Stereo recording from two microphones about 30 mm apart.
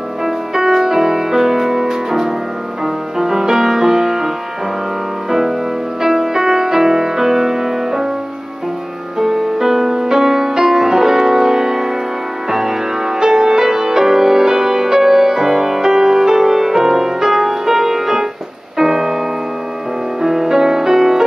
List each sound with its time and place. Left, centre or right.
0.2 s music: centre
5.3 s music: centre
9.2 s music: centre
20.2 s music: centre